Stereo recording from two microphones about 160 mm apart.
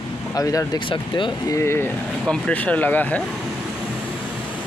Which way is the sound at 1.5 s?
15° left (ahead or behind).